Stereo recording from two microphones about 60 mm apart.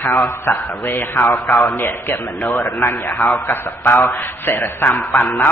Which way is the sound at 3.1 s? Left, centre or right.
Centre.